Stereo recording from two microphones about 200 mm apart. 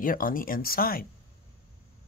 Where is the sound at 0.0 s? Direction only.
45° left (ahead or behind).